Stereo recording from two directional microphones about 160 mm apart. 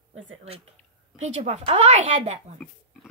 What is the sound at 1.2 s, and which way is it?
A woman's voice, 45° right (ahead or behind).